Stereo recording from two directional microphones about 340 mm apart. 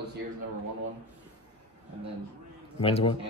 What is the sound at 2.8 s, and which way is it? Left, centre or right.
Speech, centre.